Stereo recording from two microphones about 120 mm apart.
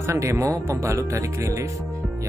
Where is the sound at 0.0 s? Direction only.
25° right (ahead or behind).